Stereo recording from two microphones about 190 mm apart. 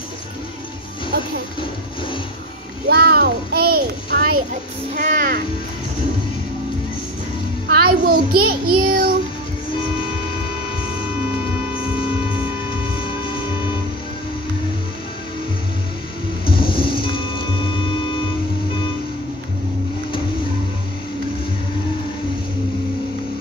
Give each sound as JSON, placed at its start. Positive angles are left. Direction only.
{"t": 2.9, "sound": "a sound", "side_deg": -55}
{"t": 4.9, "sound": "a child's voice", "side_deg": -45}
{"t": 7.7, "sound": "a child's voice", "side_deg": -55}
{"t": 16.7, "sound": "reversing beeps", "side_deg": 25}